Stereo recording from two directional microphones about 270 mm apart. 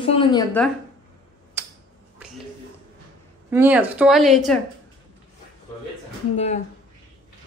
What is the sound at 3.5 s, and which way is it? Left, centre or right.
Speech, centre.